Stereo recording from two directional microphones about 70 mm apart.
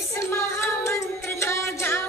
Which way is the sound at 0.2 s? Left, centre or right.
Left.